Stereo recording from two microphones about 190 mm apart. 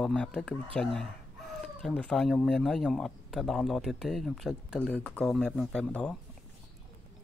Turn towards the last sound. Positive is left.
turn(degrees=5)  # may be behind; listen again after turning